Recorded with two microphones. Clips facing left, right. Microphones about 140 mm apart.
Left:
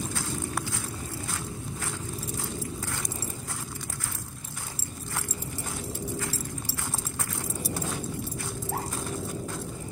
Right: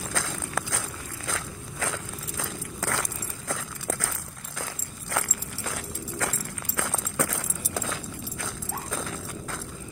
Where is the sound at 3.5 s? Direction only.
90° right.